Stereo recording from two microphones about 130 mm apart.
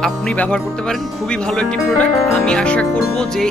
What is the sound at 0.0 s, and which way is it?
Speech, 10° left (ahead or behind).